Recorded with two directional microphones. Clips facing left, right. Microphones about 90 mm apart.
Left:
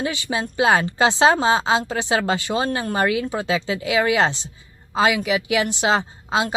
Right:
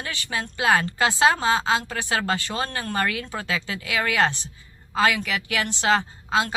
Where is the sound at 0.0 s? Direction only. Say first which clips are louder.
Left 6 dB; 20° left (ahead or behind).